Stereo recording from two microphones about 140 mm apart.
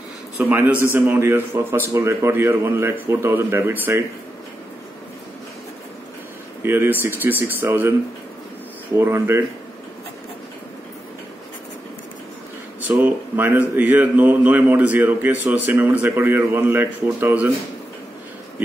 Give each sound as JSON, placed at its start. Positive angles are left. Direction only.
{"t": 0.4, "sound": "speech", "side_deg": -10}
{"t": 6.6, "sound": "speech", "side_deg": -15}
{"t": 8.9, "sound": "speech", "side_deg": -15}
{"t": 12.8, "sound": "speech", "side_deg": -15}